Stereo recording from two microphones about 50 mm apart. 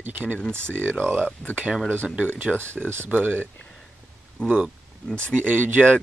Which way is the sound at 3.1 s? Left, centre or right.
Right.